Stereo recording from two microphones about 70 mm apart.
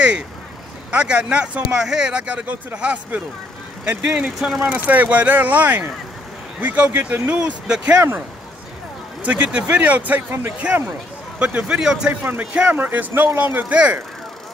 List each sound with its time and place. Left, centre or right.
0.9 s speech: centre
4.4 s speech: centre
4.6 s speech: right
7.3 s speech: centre
9.2 s speech: centre
12.1 s speech: right